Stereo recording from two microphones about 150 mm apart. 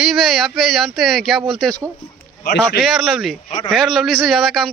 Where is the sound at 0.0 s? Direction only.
Centre (ahead or behind).